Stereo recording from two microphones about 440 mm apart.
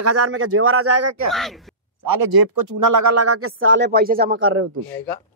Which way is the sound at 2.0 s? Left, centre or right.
Right.